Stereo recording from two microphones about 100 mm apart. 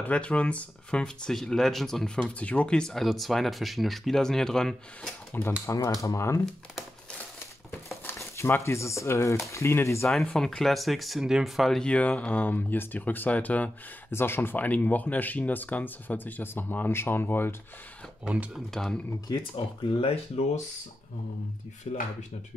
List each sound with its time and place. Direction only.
0.0 s speech: 10° left (ahead or behind)
5.4 s speech: 20° left (ahead or behind)
8.0 s speech: 25° left (ahead or behind)
10.0 s speech: 5° left (ahead or behind); by 17.6 s 20° left (ahead or behind)
18.2 s speech: 15° right (ahead or behind)
18.5 s speech: 5° left (ahead or behind)
19.5 s speech: 75° left (ahead or behind)